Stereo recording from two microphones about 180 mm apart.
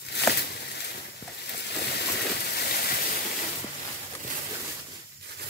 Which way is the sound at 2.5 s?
60° left (ahead or behind).